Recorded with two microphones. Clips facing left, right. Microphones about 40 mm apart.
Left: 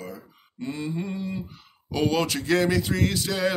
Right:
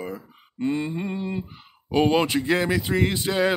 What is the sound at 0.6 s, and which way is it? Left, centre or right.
Speech, right.